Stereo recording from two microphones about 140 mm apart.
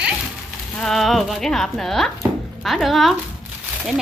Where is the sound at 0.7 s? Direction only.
Centre (ahead or behind).